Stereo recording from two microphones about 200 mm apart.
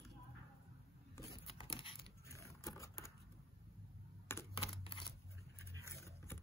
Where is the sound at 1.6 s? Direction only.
25° left (ahead or behind).